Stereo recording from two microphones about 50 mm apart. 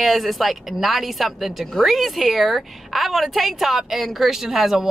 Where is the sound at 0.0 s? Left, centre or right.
Centre.